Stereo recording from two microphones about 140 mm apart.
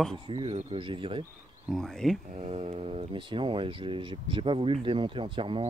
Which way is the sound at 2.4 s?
50° right (ahead or behind).